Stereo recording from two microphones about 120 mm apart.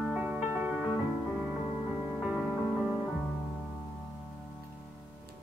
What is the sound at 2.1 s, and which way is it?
Music, 10° right (ahead or behind).